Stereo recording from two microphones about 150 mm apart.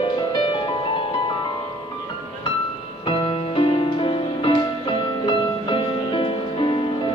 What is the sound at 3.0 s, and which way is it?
Music, 35° left (ahead or behind).